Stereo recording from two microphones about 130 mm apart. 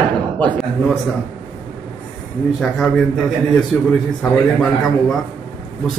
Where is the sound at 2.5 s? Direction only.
5° left (ahead or behind).